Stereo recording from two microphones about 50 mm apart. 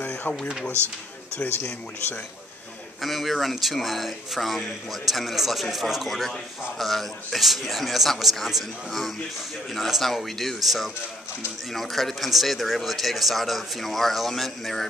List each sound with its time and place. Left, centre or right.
1.6 s speech: left
3.0 s speech: centre